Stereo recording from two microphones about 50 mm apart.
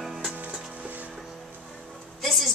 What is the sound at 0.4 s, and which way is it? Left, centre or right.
Music, right.